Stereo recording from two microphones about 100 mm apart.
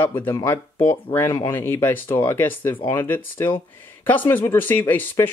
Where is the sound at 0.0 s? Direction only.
25° left (ahead or behind).